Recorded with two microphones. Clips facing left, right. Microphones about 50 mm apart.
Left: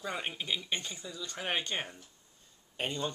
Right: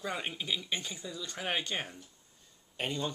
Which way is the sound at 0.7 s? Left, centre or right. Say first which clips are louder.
Even; centre.